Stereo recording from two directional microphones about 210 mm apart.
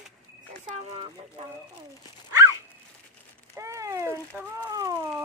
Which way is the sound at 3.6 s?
15° right (ahead or behind).